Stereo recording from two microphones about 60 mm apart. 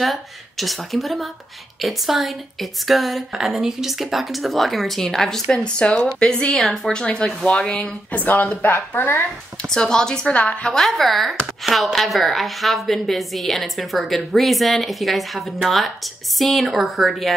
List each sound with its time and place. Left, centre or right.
0.0 s speech: centre
6.5 s speech: centre; by 8.5 s left
8.6 s speech: left
9.6 s a woman's voice: centre
10.7 s speech: centre